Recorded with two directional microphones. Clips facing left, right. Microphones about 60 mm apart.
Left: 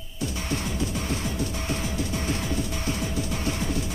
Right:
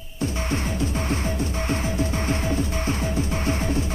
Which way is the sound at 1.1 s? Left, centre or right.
Right.